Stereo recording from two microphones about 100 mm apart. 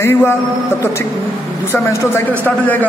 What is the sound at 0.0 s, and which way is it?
Speech, 25° left (ahead or behind).